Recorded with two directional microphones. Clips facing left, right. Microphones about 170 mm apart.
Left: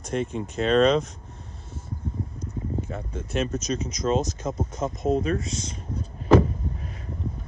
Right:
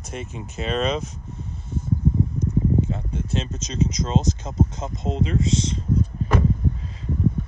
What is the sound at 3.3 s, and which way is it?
Speech, 25° right (ahead or behind).